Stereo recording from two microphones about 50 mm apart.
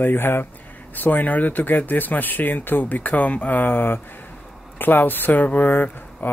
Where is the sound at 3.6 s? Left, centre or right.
Left.